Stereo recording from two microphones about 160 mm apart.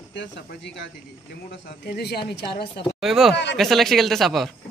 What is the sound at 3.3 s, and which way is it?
Speech, 90° left.